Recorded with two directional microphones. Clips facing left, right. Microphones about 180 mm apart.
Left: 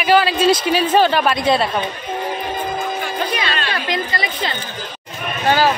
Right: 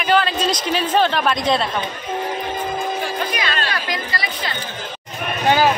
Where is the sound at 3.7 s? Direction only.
25° left (ahead or behind).